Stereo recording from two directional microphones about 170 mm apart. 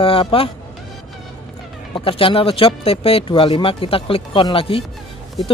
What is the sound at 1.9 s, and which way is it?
Speech, 30° left (ahead or behind).